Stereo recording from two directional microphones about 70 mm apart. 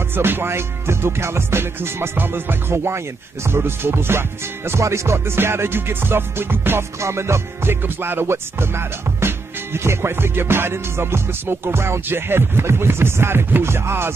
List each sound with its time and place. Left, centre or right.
0.1 s music: right